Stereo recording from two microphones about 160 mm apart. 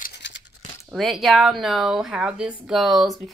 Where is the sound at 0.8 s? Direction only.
Centre (ahead or behind).